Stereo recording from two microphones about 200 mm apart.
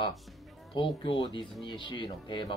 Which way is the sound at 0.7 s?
25° left (ahead or behind).